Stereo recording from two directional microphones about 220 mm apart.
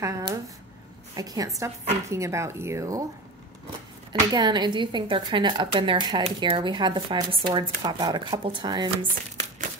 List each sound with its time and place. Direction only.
0.0 s a woman's voice: 15° right (ahead or behind)
4.1 s a woman's voice: 20° right (ahead or behind)